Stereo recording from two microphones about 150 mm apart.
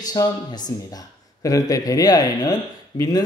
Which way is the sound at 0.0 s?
25° left (ahead or behind).